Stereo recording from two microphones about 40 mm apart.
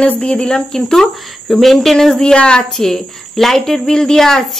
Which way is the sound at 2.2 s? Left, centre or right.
Left.